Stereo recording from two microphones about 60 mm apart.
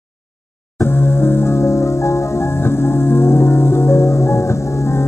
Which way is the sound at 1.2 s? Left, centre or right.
Left.